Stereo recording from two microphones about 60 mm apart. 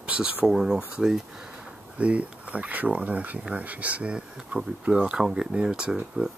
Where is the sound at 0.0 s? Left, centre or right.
Centre.